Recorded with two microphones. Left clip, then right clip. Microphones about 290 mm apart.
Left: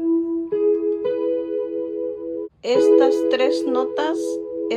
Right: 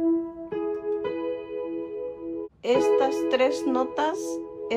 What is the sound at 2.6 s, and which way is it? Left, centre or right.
A woman's voice, centre.